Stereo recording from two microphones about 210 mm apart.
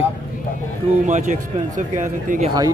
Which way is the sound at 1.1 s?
35° right (ahead or behind).